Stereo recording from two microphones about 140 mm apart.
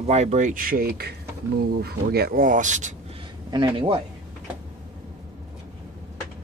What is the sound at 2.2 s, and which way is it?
Speech, 85° right.